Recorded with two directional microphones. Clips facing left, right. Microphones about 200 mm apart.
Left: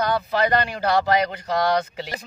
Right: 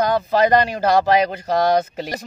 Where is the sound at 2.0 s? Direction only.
45° right (ahead or behind).